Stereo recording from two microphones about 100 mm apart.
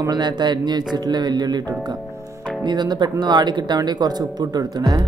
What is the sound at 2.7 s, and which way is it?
Speech, 45° right (ahead or behind).